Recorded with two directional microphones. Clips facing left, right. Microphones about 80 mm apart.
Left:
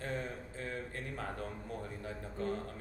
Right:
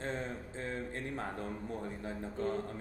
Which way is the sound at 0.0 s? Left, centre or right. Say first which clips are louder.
Right 1 dB; right.